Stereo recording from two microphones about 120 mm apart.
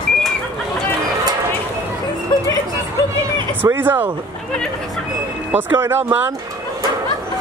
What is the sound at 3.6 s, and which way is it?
Speech, 15° right (ahead or behind).